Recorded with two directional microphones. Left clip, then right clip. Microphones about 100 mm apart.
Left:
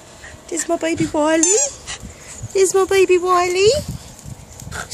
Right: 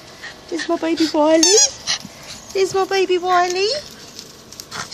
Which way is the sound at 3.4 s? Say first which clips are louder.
Left 3 dB; 50° left (ahead or behind).